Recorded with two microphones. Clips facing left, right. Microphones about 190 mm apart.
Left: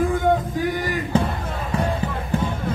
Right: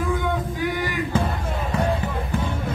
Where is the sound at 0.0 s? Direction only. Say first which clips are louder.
Left 5 dB; 50° left (ahead or behind).